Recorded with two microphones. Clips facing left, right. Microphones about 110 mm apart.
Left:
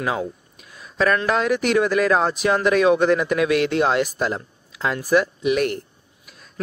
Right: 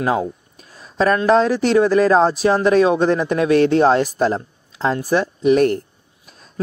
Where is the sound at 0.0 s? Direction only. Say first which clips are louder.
Right 5 dB; 35° right (ahead or behind).